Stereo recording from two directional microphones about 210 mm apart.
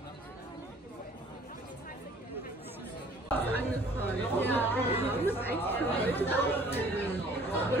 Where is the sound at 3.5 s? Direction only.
10° left (ahead or behind).